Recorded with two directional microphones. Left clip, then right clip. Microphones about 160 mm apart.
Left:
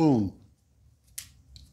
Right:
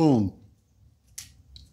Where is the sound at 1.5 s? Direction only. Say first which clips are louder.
Right 3 dB; 5° left (ahead or behind).